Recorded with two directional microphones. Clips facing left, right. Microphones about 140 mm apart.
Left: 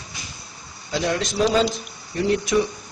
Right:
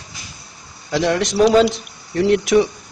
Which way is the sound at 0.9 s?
70° right (ahead or behind).